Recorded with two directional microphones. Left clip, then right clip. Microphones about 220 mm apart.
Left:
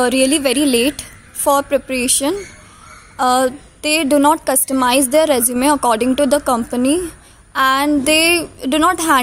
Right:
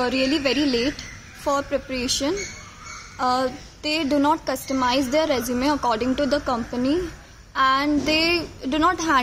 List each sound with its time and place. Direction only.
0.0 s a woman's voice: 45° left (ahead or behind)